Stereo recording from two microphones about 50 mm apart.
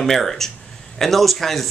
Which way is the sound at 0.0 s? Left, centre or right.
Centre.